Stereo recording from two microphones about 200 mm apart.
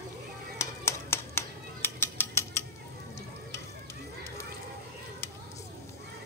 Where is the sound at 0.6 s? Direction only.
15° left (ahead or behind).